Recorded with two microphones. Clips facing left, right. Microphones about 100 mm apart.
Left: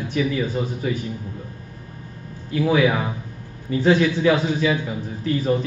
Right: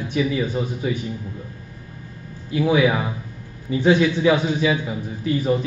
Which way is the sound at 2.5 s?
15° right (ahead or behind).